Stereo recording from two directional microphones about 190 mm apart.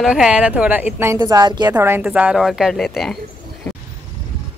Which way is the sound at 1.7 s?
10° right (ahead or behind).